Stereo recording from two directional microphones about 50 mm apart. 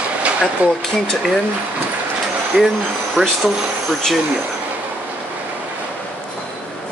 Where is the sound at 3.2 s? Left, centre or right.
Right.